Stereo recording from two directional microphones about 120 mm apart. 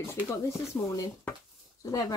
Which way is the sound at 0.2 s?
15° right (ahead or behind).